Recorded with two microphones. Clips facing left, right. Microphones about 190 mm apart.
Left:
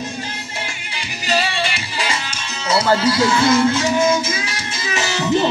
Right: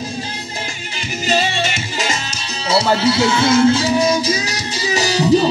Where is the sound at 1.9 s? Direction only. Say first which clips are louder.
Right 2 dB; 45° right (ahead or behind).